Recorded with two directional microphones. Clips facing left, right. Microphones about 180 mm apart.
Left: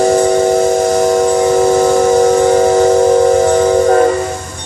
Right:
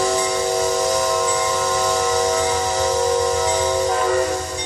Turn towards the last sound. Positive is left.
turn(degrees=55)  # may be behind; listen again after turning